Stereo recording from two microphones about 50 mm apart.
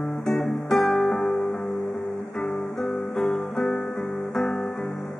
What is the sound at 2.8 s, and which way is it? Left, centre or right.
Guitar, centre.